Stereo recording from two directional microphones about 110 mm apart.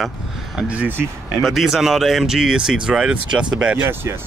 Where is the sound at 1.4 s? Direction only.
Centre (ahead or behind).